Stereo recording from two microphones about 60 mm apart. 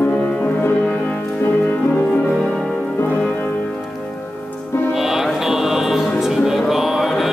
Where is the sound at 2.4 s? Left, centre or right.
Centre.